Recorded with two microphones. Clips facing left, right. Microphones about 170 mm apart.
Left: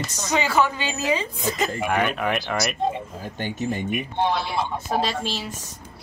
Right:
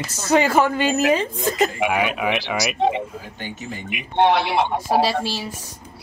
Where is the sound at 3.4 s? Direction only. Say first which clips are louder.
Left 7 dB; 45° left (ahead or behind).